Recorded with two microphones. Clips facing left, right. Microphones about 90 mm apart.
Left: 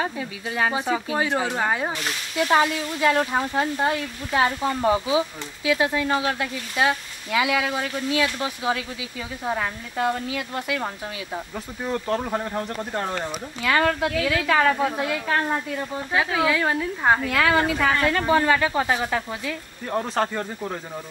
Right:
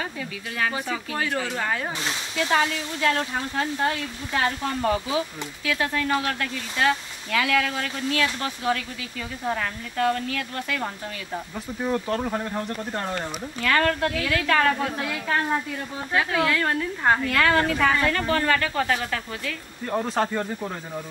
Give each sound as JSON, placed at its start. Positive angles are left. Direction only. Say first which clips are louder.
{"t": 0.0, "sound": "a woman's voice", "louder": "left 4 dB", "side_deg": 25}
{"t": 11.8, "sound": "speech", "louder": "even", "side_deg": 0}
{"t": 12.3, "sound": "a woman's voice", "louder": "left 1 dB", "side_deg": 10}
{"t": 19.9, "sound": "speech", "louder": "even", "side_deg": 0}